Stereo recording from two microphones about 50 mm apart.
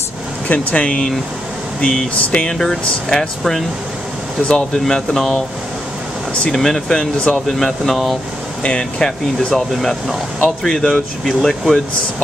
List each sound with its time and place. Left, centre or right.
0.5 s speech: left
2.3 s speech: centre
6.5 s speech: centre
8.6 s speech: centre
9.5 s speech: centre